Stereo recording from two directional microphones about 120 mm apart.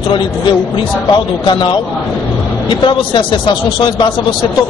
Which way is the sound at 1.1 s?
40° left (ahead or behind).